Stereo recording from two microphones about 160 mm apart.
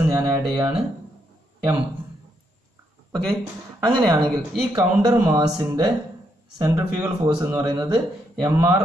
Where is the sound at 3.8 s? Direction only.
30° right (ahead or behind).